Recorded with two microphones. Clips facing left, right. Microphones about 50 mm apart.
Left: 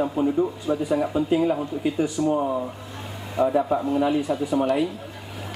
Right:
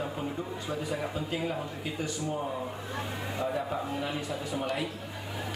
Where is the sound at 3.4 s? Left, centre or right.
Centre.